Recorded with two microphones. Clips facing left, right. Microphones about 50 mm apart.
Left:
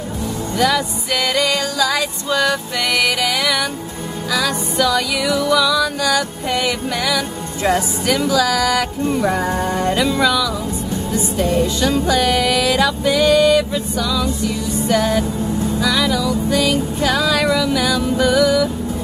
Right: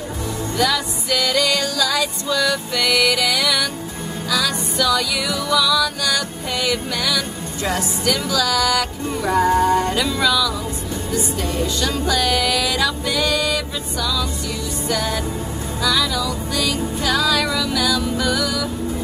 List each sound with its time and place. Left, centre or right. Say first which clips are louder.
0.6 s music: left 3 dB; centre
2.4 s music: left 1 dB; centre
8.5 s music: left 2 dB; centre
9.6 s music: right 1 dB; left
11.8 s music: left 2 dB; left